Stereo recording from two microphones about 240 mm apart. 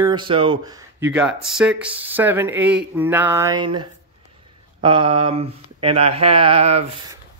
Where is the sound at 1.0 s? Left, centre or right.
Centre; by 6.9 s right.